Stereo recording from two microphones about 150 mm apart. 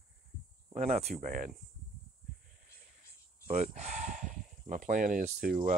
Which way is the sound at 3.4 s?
50° right (ahead or behind).